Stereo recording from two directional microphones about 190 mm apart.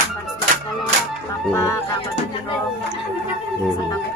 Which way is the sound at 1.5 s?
15° left (ahead or behind).